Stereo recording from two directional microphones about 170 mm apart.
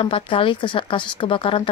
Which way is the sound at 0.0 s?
30° left (ahead or behind).